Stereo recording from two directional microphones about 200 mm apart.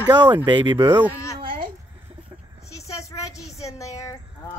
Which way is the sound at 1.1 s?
15° left (ahead or behind).